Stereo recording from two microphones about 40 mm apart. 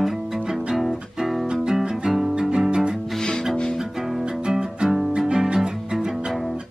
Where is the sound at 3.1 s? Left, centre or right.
Centre.